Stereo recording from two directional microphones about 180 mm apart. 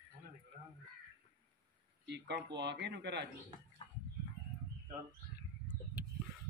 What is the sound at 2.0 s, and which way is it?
Speech, 70° right (ahead or behind).